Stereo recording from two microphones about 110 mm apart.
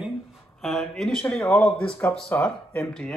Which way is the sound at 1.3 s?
25° left (ahead or behind).